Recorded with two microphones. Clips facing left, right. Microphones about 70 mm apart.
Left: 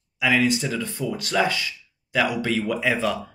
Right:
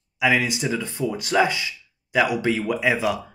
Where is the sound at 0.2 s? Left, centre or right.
Right.